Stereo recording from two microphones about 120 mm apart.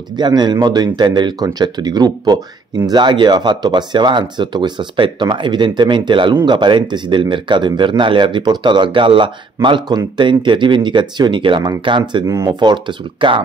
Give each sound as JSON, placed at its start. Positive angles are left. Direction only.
{"t": 0.1, "sound": "speech", "side_deg": -35}
{"t": 12.3, "sound": "speech", "side_deg": -25}
{"t": 12.5, "sound": "speech", "side_deg": -40}